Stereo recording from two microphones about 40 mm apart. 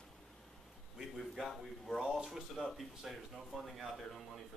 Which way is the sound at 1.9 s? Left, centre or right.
Centre.